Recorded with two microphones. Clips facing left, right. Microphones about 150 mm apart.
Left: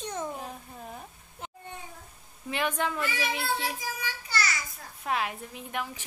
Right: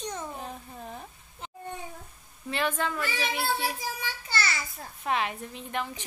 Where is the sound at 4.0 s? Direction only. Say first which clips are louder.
Left 1 dB; 30° right (ahead or behind).